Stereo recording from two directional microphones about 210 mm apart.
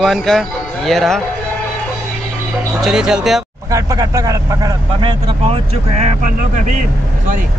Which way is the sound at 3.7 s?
15° right (ahead or behind).